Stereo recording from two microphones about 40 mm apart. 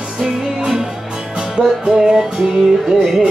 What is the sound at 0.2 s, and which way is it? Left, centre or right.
Music, centre.